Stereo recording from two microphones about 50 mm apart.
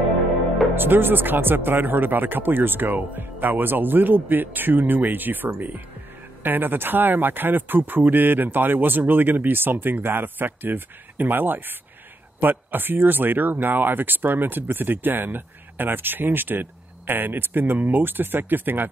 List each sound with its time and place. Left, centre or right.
0.7 s speech: right